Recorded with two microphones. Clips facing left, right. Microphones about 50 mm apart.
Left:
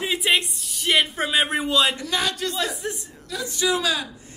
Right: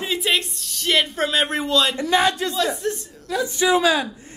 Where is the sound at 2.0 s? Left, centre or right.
Right.